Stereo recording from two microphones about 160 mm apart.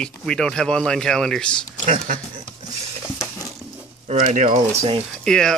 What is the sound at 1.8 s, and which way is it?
Speech, 55° right (ahead or behind).